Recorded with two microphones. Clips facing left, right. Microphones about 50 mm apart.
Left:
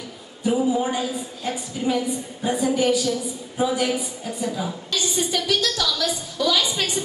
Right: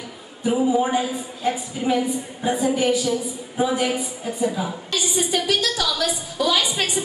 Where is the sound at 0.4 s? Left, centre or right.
Centre.